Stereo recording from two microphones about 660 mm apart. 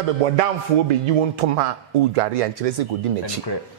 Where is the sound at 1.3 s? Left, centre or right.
Right.